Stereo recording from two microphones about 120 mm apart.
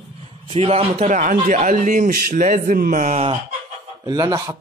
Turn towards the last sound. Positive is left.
turn(degrees=-30)  # may be behind; listen again after turning